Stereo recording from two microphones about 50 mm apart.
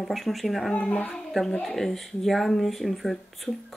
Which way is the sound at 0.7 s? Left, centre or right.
Left.